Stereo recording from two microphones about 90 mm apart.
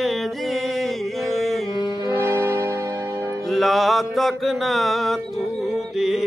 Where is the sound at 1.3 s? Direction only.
Centre (ahead or behind).